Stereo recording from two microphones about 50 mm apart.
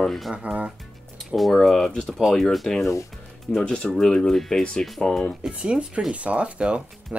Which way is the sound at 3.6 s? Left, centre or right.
Centre.